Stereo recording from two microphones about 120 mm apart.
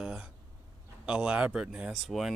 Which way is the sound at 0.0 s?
5° right (ahead or behind).